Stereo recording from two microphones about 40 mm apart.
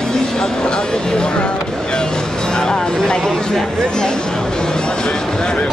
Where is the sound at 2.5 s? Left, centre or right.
Centre.